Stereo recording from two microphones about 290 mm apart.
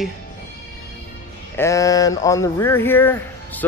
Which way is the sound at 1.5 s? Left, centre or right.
Centre.